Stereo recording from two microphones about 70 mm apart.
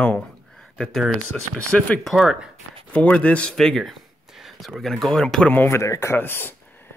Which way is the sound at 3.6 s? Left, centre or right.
Centre.